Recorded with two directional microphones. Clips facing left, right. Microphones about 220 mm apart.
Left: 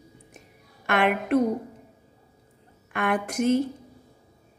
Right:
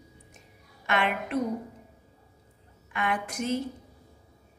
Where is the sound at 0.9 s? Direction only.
55° left (ahead or behind).